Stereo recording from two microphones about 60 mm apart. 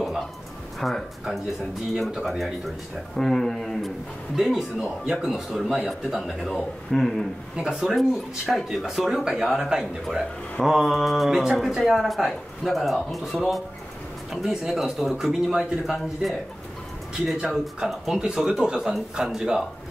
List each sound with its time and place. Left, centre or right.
0.7 s a man's voice: centre
7.5 s a man's voice: centre